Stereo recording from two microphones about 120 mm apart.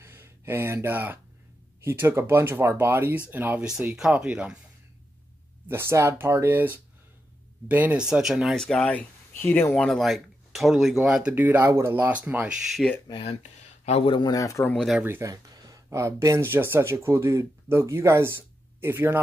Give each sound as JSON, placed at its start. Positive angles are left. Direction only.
{"t": 0.0, "sound": "speech", "side_deg": -20}
{"t": 5.7, "sound": "speech", "side_deg": -20}
{"t": 9.3, "sound": "speech", "side_deg": 15}
{"t": 9.8, "sound": "speech", "side_deg": 0}
{"t": 12.8, "sound": "speech", "side_deg": 5}
{"t": 13.1, "sound": "speech", "side_deg": 50}
{"t": 13.4, "sound": "speech", "side_deg": 60}
{"t": 14.3, "sound": "speech", "side_deg": 30}
{"t": 14.6, "sound": "speech", "side_deg": 10}
{"t": 15.0, "sound": "speech", "side_deg": -25}